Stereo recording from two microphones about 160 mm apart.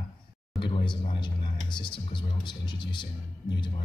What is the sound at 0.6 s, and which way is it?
A woman's voice, 30° left (ahead or behind).